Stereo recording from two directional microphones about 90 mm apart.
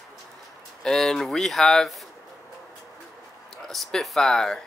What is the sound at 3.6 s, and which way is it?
Speech, 5° left (ahead or behind).